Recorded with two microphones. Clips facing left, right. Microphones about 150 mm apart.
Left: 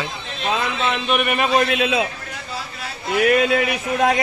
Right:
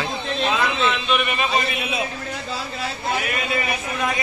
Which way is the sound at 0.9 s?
50° left (ahead or behind).